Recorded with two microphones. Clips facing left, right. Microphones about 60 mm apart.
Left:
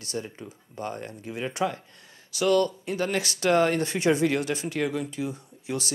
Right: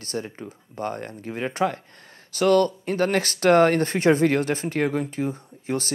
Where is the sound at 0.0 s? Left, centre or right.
Right.